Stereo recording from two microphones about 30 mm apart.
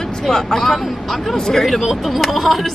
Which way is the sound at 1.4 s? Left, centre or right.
Centre.